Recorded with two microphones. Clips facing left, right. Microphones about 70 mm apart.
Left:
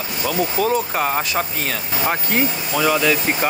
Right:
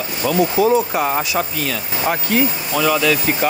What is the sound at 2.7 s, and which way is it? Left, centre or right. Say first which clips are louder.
Speech: right 1 dB; centre.